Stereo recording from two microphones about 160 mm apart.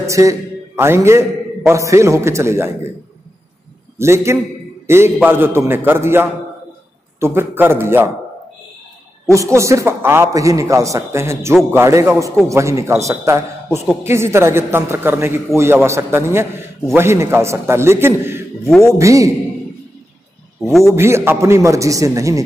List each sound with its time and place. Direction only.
0.0 s a man's voice: 20° right (ahead or behind)
4.0 s a man's voice: 15° right (ahead or behind)
9.3 s a man's voice: 20° right (ahead or behind)
20.9 s a man's voice: 15° right (ahead or behind)